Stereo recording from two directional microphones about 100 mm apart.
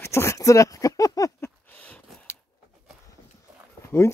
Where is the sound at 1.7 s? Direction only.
15° left (ahead or behind).